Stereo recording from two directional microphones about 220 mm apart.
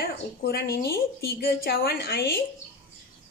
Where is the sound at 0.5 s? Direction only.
45° left (ahead or behind).